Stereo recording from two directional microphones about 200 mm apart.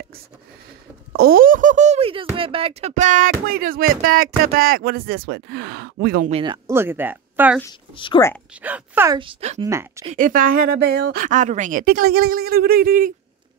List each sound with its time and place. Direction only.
1.1 s speech: 50° right (ahead or behind)
6.3 s speech: 20° right (ahead or behind)
7.9 s speech: 25° left (ahead or behind)
8.6 s speech: 10° right (ahead or behind)
9.2 s speech: 30° right (ahead or behind)
9.6 s speech: 15° right (ahead or behind)
10.1 s speech: 45° right (ahead or behind)
11.2 s speech: 35° right (ahead or behind)